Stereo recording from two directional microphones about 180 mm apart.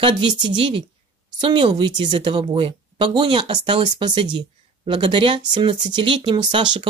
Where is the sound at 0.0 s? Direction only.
25° right (ahead or behind).